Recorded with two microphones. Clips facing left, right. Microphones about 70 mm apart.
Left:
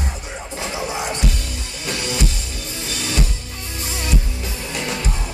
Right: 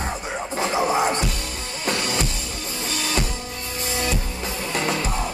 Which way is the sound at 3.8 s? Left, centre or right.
Right.